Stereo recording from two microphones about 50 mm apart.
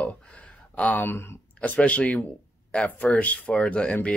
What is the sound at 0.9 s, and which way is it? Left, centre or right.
Speech, left.